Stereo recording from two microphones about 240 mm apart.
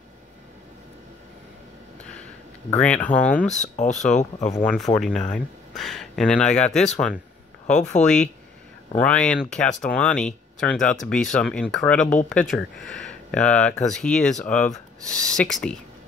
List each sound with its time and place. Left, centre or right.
2.7 s speech: centre
3.7 s speech: left
4.6 s speech: centre